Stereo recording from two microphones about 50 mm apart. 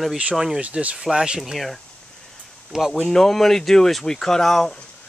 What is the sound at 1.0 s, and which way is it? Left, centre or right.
Speech, centre.